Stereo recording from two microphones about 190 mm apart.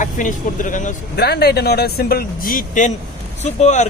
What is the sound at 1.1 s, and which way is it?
Speech, 60° left (ahead or behind).